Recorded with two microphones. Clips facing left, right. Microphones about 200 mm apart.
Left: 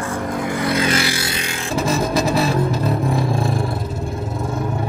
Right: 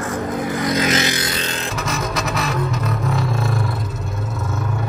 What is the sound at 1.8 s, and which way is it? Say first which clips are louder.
Music: left 8 dB; 30° left (ahead or behind).